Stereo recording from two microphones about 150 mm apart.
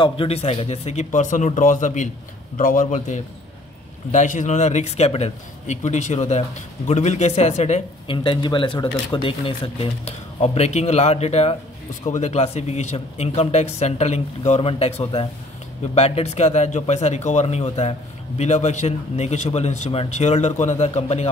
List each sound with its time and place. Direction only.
0.0 s a man's voice: 40° left (ahead or behind)
8.1 s speech: 35° left (ahead or behind)